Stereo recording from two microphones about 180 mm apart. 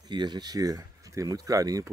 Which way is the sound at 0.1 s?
25° right (ahead or behind).